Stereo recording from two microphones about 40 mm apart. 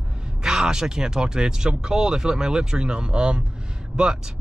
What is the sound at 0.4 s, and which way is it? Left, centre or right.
Speech, centre.